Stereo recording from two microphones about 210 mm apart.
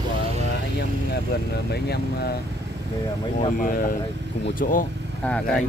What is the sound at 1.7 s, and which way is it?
Speech, 50° left (ahead or behind).